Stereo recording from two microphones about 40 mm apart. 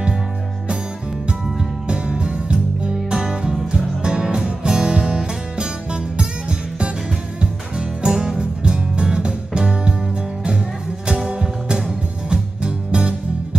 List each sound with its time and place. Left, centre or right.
1.9 s music: right
7.3 s music: right
11.1 s music: right